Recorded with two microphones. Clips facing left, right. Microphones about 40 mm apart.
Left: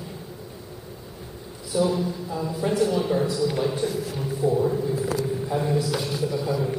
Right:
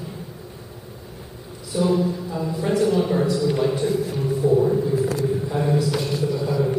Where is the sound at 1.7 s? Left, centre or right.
Centre.